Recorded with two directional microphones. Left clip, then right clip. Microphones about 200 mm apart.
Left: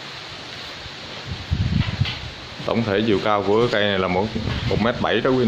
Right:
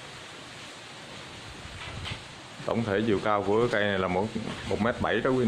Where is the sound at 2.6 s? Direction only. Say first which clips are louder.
Left 7 dB; centre (ahead or behind).